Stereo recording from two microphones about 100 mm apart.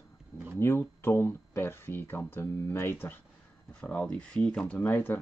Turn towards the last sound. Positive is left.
turn(degrees=20)  # may be behind; listen again after turning